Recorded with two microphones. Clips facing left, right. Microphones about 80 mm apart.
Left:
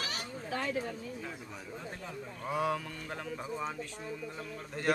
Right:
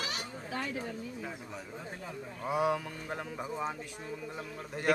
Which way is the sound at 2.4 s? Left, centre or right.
Centre.